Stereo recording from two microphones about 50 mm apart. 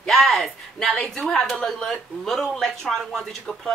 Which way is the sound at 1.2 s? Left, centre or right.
Centre.